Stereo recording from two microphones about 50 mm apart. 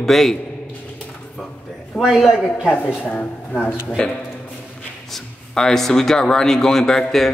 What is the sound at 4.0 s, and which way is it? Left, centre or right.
A man's voice, centre.